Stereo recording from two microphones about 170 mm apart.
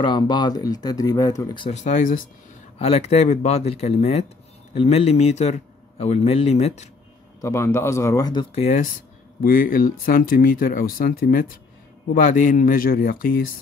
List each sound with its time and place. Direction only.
0.0 s speech: 25° left (ahead or behind)
1.7 s speech: 45° left (ahead or behind)
7.4 s speech: 15° left (ahead or behind)
8.5 s speech: 40° left (ahead or behind); by 13.4 s 60° left (ahead or behind)